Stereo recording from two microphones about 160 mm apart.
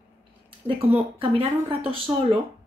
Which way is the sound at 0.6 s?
35° right (ahead or behind).